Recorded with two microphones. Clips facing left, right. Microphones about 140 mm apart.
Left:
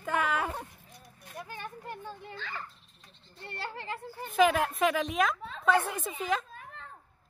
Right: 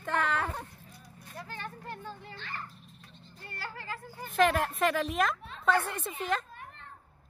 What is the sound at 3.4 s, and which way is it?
Speech, 25° left (ahead or behind).